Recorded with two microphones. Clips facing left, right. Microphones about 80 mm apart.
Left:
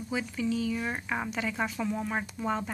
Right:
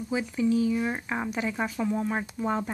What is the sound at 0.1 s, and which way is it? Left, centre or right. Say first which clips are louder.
Speech: right 5 dB; centre.